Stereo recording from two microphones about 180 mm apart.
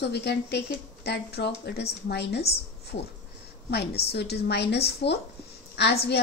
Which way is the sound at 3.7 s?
65° left (ahead or behind).